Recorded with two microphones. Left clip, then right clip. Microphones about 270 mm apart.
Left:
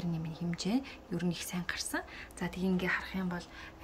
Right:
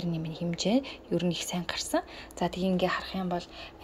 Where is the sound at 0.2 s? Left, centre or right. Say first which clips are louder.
Right 7 dB; centre.